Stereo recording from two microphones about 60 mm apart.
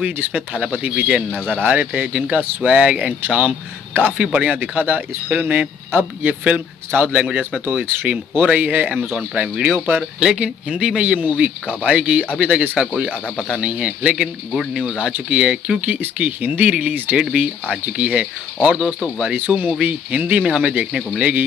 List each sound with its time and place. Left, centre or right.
0.3 s speech: right
4.2 s speech: centre
5.9 s speech: right
7.8 s speech: right
8.1 s speech: right
12.7 s speech: centre
16.9 s speech: right
19.3 s speech: right